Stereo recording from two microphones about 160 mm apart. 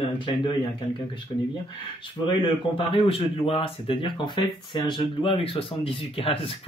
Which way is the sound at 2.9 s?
35° left (ahead or behind).